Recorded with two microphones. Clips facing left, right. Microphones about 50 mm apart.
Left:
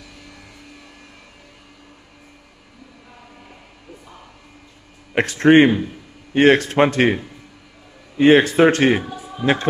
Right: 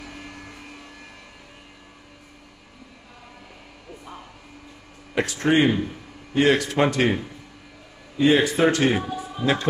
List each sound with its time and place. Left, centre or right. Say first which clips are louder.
0.0 s vehicle: right 4 dB; right
5.1 s a man's voice: left 8 dB; left
8.2 s a man's voice: left 6 dB; left